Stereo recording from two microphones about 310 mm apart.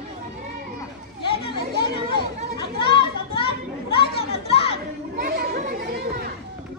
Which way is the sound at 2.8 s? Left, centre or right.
Centre.